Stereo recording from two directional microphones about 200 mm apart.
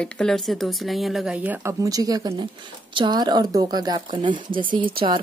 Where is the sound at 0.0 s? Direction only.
5° left (ahead or behind).